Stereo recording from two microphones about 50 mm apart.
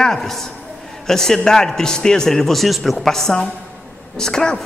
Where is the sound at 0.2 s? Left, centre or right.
Centre.